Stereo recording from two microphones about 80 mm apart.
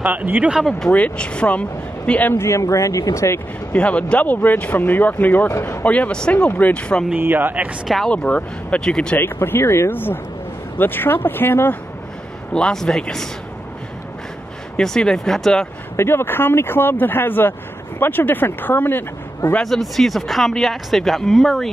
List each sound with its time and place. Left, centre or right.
0.0 s speech: right
0.5 s speech: centre
0.7 s speech: centre
2.3 s speech: left
3.7 s speech: centre
5.5 s speech: left
5.9 s speech: centre
7.2 s speech: right
8.1 s speech: centre
9.1 s speech: left
12.5 s speech: centre
14.8 s speech: centre
16.0 s speech: left
19.6 s speech: centre